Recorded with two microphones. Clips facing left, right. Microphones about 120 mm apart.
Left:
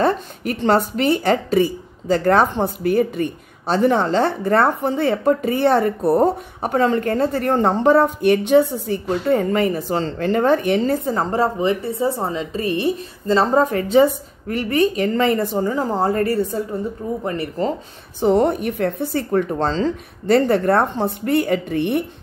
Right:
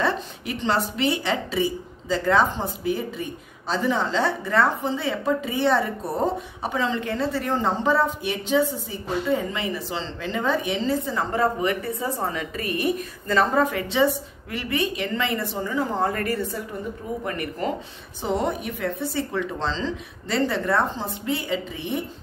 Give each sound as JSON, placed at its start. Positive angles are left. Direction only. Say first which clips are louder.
{"t": 0.0, "sound": "a woman's voice", "louder": "left 6 dB", "side_deg": 50}
{"t": 18.2, "sound": "speech", "louder": "left 9 dB", "side_deg": 55}